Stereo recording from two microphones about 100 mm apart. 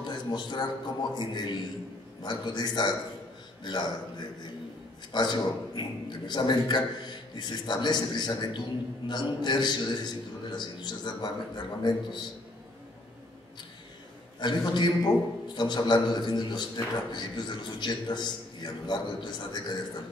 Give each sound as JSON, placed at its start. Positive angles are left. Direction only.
{"t": 0.0, "sound": "a sound", "side_deg": 45}
{"t": 1.1, "sound": "a man's voice", "side_deg": 50}
{"t": 14.4, "sound": "a man's voice", "side_deg": 50}